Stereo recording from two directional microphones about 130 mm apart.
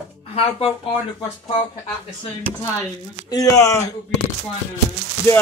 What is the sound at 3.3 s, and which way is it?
Speech, 25° left (ahead or behind).